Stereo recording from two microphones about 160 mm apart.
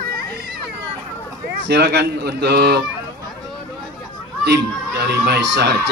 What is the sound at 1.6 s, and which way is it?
Speech, 90° right.